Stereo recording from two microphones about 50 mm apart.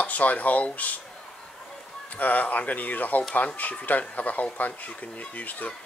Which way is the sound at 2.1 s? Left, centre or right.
Left.